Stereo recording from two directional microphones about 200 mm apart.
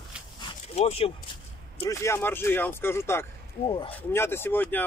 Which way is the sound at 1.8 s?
15° left (ahead or behind).